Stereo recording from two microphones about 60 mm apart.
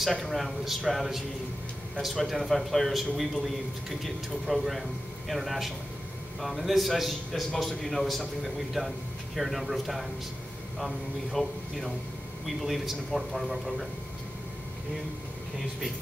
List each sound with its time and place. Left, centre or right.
0.0 s a man's voice: centre